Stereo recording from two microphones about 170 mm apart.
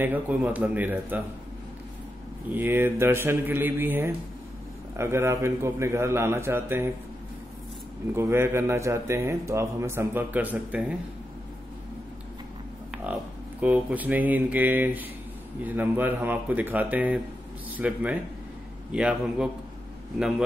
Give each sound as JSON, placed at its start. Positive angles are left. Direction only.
{"t": 0.0, "sound": "a man's voice", "side_deg": -10}
{"t": 2.5, "sound": "a man's voice", "side_deg": -10}
{"t": 8.1, "sound": "a man's voice", "side_deg": -15}
{"t": 12.9, "sound": "a man's voice", "side_deg": -10}